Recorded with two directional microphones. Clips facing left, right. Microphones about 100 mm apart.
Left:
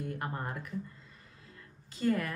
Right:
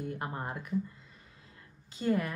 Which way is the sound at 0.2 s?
20° right (ahead or behind).